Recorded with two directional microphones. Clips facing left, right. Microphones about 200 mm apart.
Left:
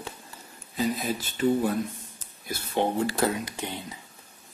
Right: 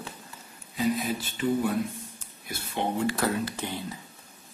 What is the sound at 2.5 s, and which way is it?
Speech, 40° left (ahead or behind).